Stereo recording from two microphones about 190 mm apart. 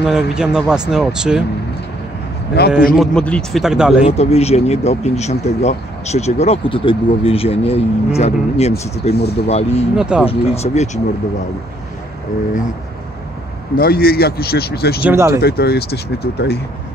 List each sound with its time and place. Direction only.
0.0 s speech: 5° right (ahead or behind)
2.6 s speech: 55° left (ahead or behind)
3.0 s speech: 5° left (ahead or behind)
4.0 s speech: 35° left (ahead or behind)
9.1 s speech: 60° left (ahead or behind)
9.5 s speech: 35° left (ahead or behind)
9.9 s speech: 5° right (ahead or behind)
10.2 s speech: 35° left (ahead or behind)
13.7 s speech: 50° left (ahead or behind)
15.0 s speech: 15° right (ahead or behind)
15.4 s speech: 55° left (ahead or behind)